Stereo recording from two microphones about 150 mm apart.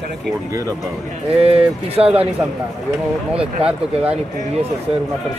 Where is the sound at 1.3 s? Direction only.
40° right (ahead or behind).